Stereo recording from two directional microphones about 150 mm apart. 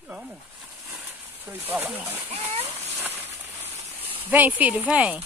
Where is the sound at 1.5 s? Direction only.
15° right (ahead or behind).